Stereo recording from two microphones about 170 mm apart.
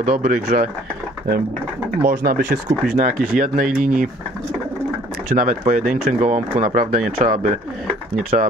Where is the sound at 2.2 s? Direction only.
60° right (ahead or behind).